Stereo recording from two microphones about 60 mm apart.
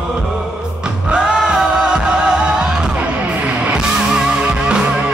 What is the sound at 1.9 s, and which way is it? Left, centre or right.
Music, centre.